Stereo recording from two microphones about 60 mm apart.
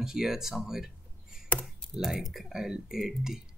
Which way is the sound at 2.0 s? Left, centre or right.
Centre.